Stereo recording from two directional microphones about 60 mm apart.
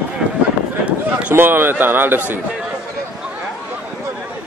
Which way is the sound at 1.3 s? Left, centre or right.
Right.